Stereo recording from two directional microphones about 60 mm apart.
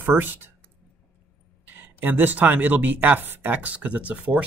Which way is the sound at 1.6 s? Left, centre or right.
Right.